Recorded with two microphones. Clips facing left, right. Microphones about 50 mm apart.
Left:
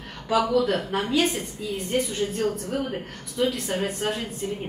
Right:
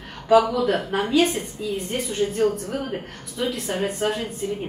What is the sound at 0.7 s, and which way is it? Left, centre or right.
A woman's voice, centre.